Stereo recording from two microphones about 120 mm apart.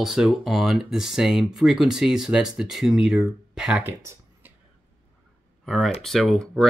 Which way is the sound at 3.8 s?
15° right (ahead or behind).